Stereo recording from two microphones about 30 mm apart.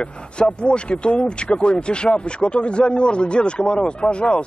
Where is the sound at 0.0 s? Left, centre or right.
Left.